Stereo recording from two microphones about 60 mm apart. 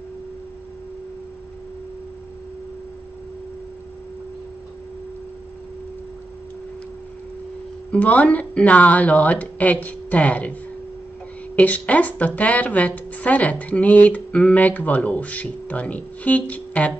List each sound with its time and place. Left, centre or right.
7.9 s speech: left
11.5 s speech: left